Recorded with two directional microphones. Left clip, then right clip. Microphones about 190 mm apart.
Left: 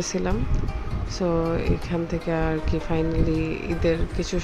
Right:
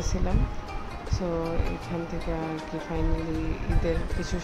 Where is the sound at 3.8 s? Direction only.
20° left (ahead or behind).